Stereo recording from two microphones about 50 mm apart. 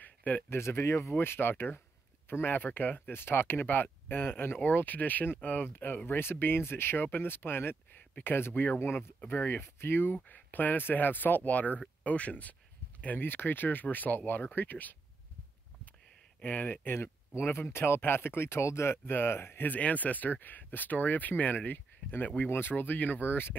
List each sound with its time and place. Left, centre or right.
0.0 s a sound: left
0.5 s speech: left
1.1 s speech: left
3.6 s speech: left
6.0 s speech: left
10.2 s speech: left
13.0 s speech: left
16.3 s speech: left
19.7 s speech: left